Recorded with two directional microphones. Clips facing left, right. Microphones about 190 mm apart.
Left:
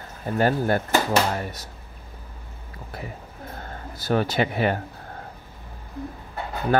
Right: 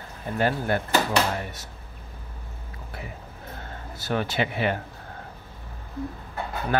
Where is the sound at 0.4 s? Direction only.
40° left (ahead or behind).